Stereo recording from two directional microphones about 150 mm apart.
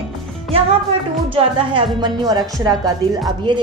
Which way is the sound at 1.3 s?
35° right (ahead or behind).